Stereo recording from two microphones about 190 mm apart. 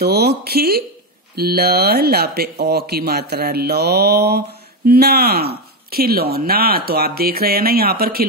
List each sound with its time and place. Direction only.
0.0 s speech: 55° right (ahead or behind)